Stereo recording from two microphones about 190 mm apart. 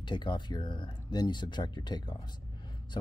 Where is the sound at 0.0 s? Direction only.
25° left (ahead or behind).